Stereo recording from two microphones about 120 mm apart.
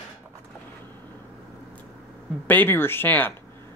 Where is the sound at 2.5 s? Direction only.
15° left (ahead or behind).